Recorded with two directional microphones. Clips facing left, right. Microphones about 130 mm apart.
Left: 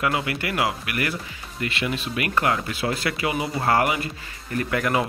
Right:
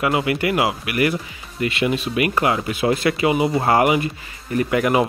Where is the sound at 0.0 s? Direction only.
20° right (ahead or behind).